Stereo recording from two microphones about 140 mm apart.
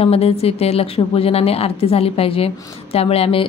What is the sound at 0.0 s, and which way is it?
Speech, 45° left (ahead or behind).